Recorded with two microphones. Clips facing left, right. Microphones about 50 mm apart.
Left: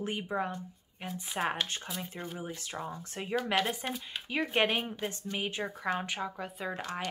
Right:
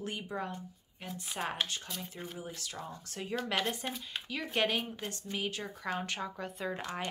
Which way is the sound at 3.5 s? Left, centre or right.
Centre.